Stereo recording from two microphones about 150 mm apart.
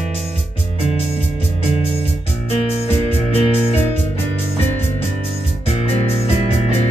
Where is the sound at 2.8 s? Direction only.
40° left (ahead or behind).